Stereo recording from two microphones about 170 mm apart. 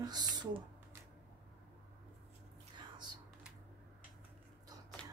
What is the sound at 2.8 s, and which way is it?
Whispering, 25° right (ahead or behind).